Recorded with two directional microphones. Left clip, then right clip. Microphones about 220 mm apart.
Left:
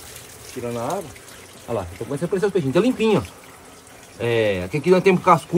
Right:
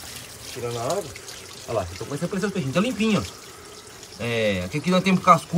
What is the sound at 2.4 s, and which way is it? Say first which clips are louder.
Speech: left 6 dB; 30° left (ahead or behind).